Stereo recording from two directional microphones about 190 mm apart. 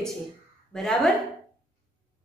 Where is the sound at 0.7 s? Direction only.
Centre (ahead or behind).